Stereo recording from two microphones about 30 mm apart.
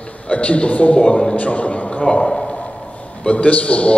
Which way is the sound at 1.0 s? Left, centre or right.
Left.